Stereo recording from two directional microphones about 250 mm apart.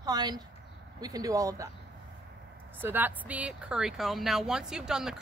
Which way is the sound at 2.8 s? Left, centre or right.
Centre.